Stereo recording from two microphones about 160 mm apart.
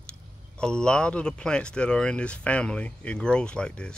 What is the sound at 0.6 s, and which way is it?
Speech, 5° left (ahead or behind).